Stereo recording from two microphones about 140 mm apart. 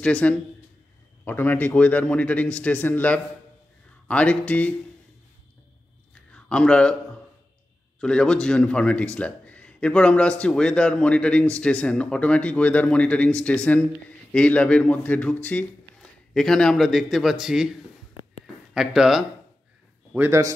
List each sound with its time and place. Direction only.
0.0 s speech: 10° left (ahead or behind)
6.3 s a man's voice: 5° left (ahead or behind)
8.0 s speech: 5° left (ahead or behind)
20.2 s speech: 20° right (ahead or behind)